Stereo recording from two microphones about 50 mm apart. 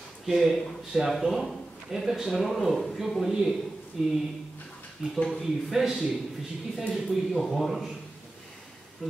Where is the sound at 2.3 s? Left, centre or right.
Centre.